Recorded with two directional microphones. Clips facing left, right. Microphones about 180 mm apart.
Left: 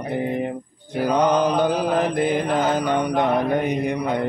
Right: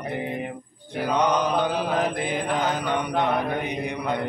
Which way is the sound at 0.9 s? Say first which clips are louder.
Left 4 dB; 40° left (ahead or behind).